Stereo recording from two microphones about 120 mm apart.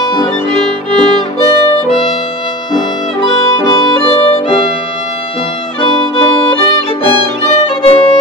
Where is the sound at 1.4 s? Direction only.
40° left (ahead or behind).